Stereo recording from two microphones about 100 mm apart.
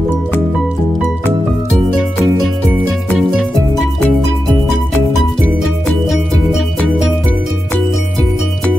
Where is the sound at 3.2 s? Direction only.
Centre (ahead or behind).